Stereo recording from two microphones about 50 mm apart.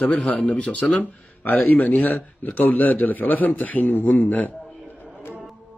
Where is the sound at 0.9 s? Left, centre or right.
Left.